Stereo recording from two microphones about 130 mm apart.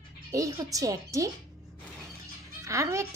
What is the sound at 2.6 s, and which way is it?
Speech, 25° right (ahead or behind).